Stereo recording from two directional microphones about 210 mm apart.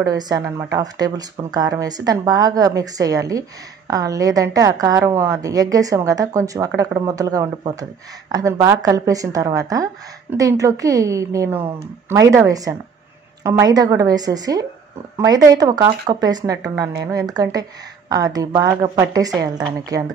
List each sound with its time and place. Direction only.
0.0 s speech: 15° right (ahead or behind)